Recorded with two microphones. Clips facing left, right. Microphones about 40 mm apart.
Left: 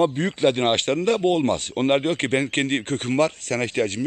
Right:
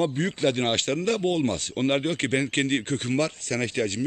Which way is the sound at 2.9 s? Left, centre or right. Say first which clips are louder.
Left 4 dB; left.